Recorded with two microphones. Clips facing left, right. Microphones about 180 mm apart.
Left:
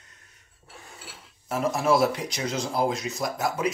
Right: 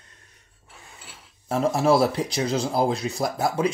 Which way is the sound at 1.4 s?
30° right (ahead or behind).